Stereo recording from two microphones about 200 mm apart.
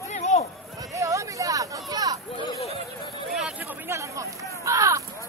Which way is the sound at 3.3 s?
5° right (ahead or behind).